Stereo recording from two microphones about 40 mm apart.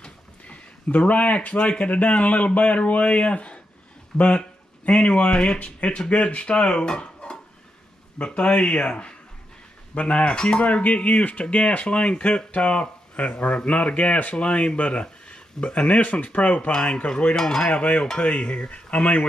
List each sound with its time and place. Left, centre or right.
0.5 s speech: left
10.6 s speech: left
16.7 s speech: left
17.4 s cutlery: centre
17.6 s speech: left